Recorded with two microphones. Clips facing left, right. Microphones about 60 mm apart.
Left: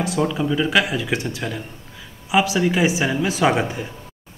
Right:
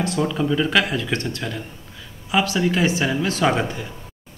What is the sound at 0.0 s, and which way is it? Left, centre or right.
A man's voice, centre.